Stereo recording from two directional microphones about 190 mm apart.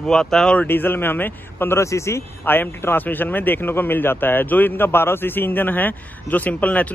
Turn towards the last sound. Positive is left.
turn(degrees=10)  # may be behind; listen again after turning